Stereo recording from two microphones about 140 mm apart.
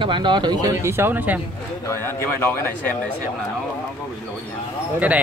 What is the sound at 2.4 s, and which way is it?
Speech, 15° left (ahead or behind).